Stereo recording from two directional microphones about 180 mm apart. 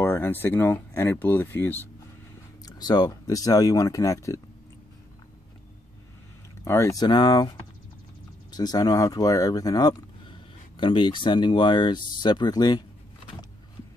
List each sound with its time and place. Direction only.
0.0 s speech: 15° left (ahead or behind)
6.6 s speech: 15° left (ahead or behind)